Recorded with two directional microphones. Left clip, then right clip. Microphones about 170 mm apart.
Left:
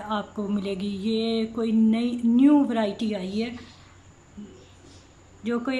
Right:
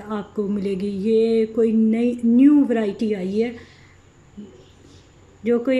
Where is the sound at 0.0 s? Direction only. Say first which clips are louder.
Right 3 dB; 10° right (ahead or behind).